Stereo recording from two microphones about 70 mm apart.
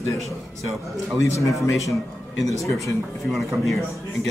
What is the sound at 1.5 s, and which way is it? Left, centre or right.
Speech, centre.